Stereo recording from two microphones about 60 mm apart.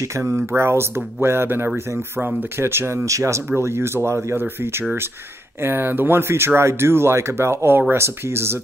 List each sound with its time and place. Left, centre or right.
0.1 s speech: right
3.1 s speech: right
3.4 s speech: right
5.6 s speech: right